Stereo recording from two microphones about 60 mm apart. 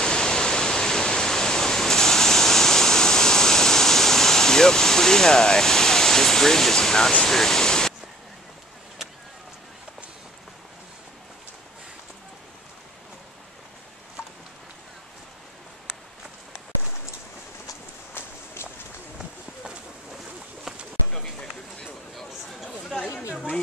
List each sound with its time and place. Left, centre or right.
0.0 s waterfall: centre
18.1 s walk: left
20.7 s pigeon: centre
21.1 s a sound: centre
22.1 s chatter: centre